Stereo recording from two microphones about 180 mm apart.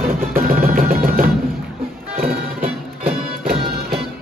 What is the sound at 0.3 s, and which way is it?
Drum, 50° right (ahead or behind).